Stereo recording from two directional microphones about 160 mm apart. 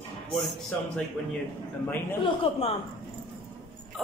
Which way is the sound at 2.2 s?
35° left (ahead or behind).